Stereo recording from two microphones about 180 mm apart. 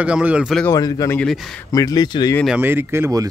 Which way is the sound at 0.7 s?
20° left (ahead or behind).